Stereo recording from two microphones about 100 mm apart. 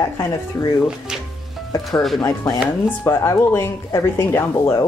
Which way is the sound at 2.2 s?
40° left (ahead or behind).